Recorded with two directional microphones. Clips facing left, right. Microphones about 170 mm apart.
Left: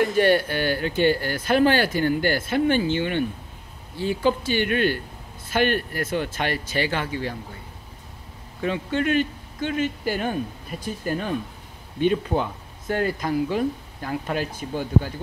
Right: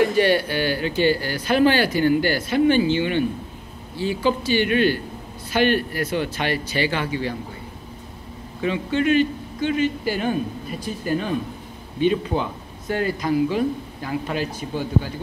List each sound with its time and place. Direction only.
0.0 s speech: 50° left (ahead or behind)
8.6 s speech: 50° left (ahead or behind)